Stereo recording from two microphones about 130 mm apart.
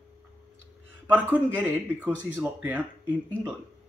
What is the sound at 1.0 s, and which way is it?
A man's voice, 15° right (ahead or behind).